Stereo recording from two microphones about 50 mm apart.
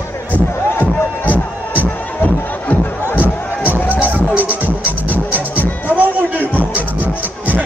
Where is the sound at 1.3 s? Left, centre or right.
Left.